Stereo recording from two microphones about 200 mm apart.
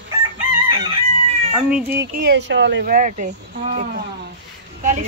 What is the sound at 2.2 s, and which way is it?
Speech, 60° right (ahead or behind).